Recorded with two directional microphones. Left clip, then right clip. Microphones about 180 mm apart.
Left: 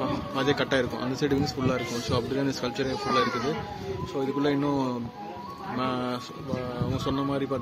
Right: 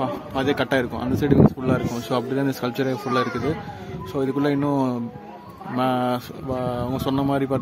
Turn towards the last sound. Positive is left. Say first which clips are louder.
# right 6 dB
turn(degrees=-40)  # may be behind; listen again after turning